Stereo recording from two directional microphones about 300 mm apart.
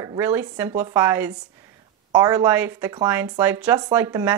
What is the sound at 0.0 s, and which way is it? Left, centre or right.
Speech, centre.